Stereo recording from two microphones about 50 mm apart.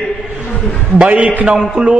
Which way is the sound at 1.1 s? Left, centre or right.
Right.